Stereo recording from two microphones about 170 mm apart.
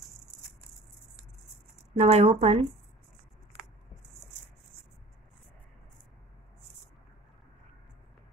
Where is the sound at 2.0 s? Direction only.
40° right (ahead or behind).